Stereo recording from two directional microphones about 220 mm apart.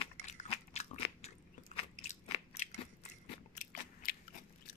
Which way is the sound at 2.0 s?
30° left (ahead or behind).